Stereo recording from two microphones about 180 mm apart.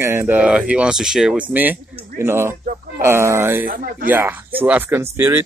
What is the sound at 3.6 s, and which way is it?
Speech, 50° right (ahead or behind).